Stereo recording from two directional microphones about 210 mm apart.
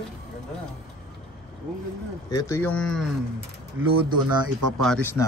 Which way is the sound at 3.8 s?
10° right (ahead or behind).